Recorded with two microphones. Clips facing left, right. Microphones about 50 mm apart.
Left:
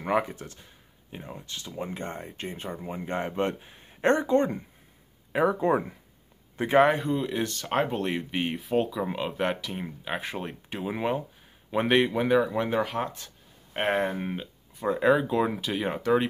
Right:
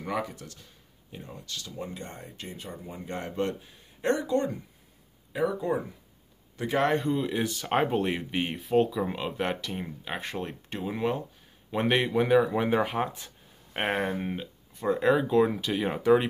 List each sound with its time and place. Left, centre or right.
0.0 s speech: left
6.5 s speech: left
6.9 s speech: centre
11.7 s speech: centre
13.7 s speech: centre